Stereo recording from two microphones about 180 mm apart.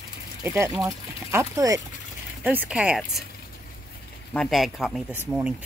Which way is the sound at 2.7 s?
5° right (ahead or behind).